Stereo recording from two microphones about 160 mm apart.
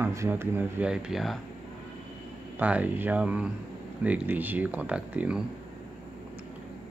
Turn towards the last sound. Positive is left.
turn(degrees=-5)  # may be behind; listen again after turning